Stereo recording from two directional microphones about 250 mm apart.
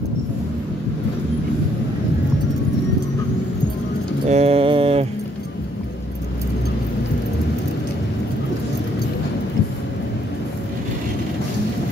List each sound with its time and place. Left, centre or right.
4.3 s mantra: right